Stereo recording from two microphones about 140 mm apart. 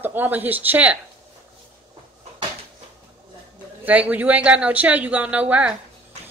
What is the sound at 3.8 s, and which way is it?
A woman's voice, 10° right (ahead or behind).